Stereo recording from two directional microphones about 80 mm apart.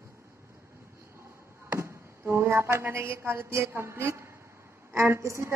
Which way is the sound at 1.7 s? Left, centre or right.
Right.